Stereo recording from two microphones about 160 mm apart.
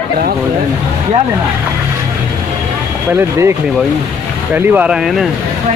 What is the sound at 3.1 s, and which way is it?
Speech, 15° right (ahead or behind).